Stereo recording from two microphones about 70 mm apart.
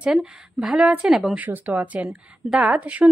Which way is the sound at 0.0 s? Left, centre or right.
Centre.